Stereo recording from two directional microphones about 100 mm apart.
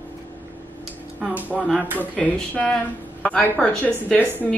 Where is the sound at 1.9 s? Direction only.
15° left (ahead or behind).